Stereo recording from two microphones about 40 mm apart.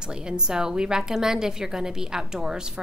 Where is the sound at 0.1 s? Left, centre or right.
Right.